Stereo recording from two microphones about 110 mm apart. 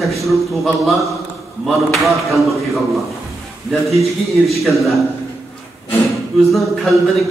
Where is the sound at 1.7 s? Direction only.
Centre (ahead or behind).